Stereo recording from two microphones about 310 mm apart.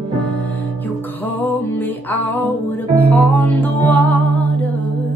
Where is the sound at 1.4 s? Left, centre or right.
Centre.